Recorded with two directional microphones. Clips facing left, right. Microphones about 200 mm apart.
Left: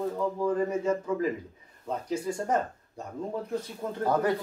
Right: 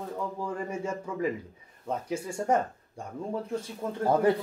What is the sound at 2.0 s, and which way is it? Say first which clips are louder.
Speech: right 1 dB; 10° right (ahead or behind).